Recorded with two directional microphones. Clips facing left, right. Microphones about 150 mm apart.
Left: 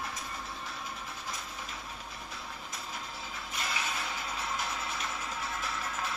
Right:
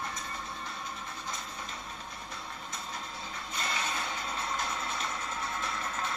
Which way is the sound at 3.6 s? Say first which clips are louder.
Right 2 dB; centre (ahead or behind).